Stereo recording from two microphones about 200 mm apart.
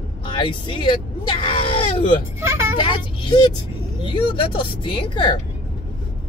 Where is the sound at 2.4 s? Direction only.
15° right (ahead or behind).